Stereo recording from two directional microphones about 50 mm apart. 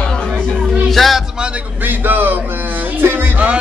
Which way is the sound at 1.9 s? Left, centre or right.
Right.